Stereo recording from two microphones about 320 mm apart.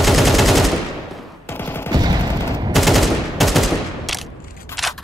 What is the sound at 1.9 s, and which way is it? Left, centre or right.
Fusillade, centre.